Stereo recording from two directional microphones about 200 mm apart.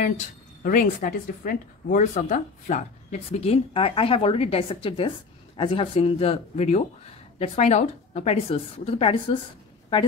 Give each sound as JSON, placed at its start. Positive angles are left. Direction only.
{"t": 0.7, "sound": "a woman's voice", "side_deg": 45}